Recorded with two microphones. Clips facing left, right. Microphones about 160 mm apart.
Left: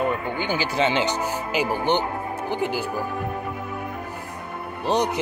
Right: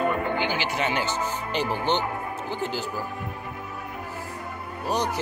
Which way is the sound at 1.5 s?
10° left (ahead or behind).